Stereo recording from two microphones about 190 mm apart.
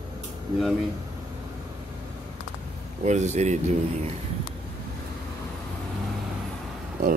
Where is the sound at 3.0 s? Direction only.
40° right (ahead or behind).